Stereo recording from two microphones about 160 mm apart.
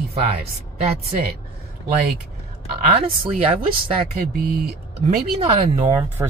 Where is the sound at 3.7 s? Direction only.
70° right (ahead or behind).